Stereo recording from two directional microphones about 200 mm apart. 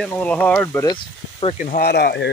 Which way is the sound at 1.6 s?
45° left (ahead or behind).